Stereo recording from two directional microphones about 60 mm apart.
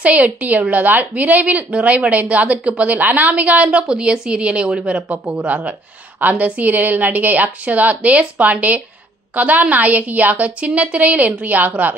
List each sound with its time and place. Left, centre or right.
0.0 s a woman's voice: right